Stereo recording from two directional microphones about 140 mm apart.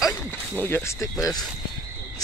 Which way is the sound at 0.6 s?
15° left (ahead or behind).